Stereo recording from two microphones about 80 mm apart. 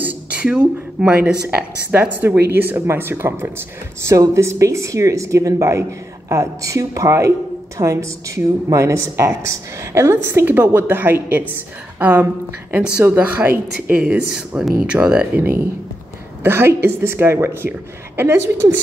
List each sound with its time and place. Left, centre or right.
0.0 s speech: centre
16.4 s speech: right